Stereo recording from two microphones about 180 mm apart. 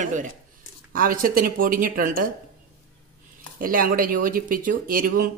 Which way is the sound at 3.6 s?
50° right (ahead or behind).